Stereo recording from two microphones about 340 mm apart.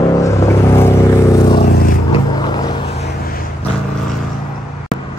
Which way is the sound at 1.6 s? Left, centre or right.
Left.